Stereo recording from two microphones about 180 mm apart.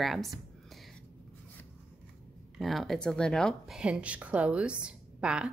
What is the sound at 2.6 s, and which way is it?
A woman's voice, centre (ahead or behind).